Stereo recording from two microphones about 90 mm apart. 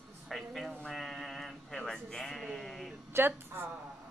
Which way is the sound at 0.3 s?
Centre (ahead or behind).